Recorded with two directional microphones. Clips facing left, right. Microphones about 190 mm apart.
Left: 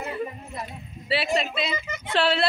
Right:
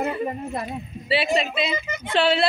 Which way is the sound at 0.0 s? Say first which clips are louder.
Right 6 dB; 60° right (ahead or behind).